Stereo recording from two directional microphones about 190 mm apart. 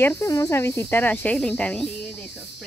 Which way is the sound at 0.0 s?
15° left (ahead or behind).